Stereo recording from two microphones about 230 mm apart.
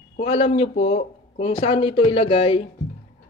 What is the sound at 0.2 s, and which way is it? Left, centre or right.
A man's voice, left.